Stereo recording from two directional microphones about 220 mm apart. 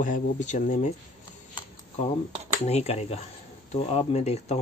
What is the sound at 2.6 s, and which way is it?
Speech, 30° left (ahead or behind).